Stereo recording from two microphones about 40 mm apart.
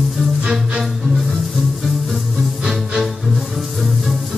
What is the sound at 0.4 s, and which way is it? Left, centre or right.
Music, right.